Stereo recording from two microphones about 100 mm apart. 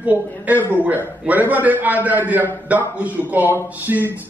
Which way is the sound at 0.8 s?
15° right (ahead or behind).